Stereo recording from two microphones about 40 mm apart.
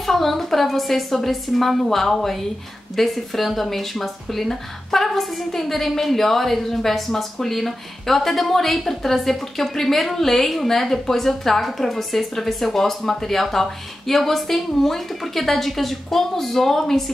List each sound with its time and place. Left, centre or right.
0.0 s speech: centre